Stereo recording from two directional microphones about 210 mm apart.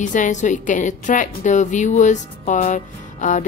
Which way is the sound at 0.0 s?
35° left (ahead or behind).